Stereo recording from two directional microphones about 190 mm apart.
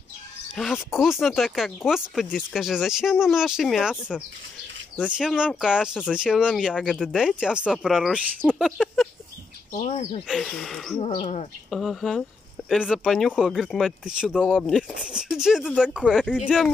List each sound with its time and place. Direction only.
0.6 s speech: centre (ahead or behind)
9.7 s speech: 35° left (ahead or behind)
10.2 s speech: centre (ahead or behind)
11.0 s speech: 30° left (ahead or behind)
11.7 s speech: centre (ahead or behind)